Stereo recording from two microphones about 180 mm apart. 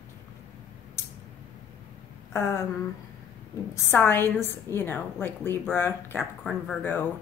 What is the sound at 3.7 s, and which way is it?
A woman's voice, 10° left (ahead or behind).